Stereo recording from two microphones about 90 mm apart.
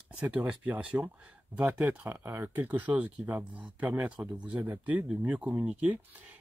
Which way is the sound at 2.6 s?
15° right (ahead or behind).